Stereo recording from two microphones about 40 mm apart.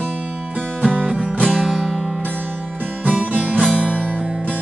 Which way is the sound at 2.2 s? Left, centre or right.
Right.